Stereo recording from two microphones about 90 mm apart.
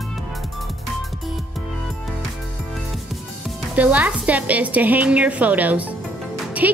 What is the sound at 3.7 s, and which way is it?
A woman's voice, 15° right (ahead or behind).